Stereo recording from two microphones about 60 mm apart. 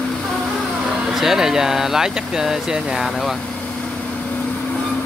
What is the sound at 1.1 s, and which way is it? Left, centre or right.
Speech, centre.